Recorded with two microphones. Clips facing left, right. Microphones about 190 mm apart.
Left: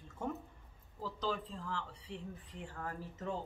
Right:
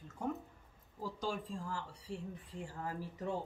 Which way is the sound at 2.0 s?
40° right (ahead or behind).